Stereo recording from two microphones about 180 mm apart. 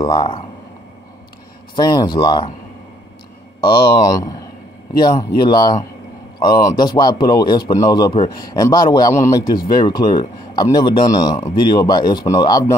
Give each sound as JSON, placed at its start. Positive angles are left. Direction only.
{"t": 0.0, "sound": "speech", "side_deg": 25}
{"t": 1.8, "sound": "speech", "side_deg": 25}
{"t": 3.6, "sound": "speech", "side_deg": 20}